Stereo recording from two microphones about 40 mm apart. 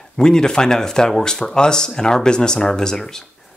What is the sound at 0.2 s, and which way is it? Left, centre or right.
Speech, centre.